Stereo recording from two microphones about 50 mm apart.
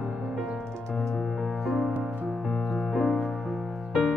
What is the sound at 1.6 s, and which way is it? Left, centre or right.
Music, centre.